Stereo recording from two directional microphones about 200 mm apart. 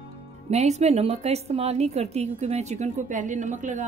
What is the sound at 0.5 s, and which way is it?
Speech, 35° right (ahead or behind).